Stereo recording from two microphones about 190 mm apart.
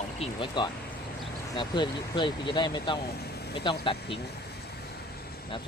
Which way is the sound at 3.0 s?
55° left (ahead or behind).